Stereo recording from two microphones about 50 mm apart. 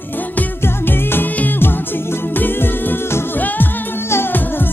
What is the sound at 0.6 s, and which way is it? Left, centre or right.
Music, left.